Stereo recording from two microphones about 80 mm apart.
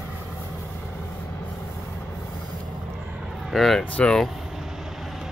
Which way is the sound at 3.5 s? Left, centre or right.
Centre.